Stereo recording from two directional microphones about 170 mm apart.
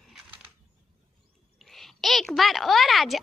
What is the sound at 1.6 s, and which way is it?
Speech, centre (ahead or behind).